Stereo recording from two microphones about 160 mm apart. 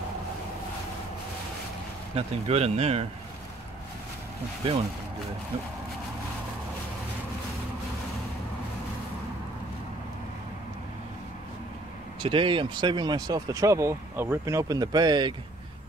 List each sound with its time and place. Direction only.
2.1 s speech: 40° right (ahead or behind)
12.2 s speech: 35° right (ahead or behind)